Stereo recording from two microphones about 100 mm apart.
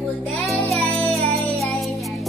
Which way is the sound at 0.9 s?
Centre (ahead or behind).